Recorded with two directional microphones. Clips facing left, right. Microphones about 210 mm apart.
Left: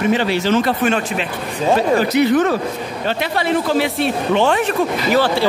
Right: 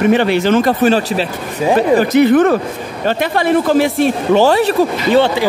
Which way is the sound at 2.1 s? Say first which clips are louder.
Right 7 dB; 55° right (ahead or behind).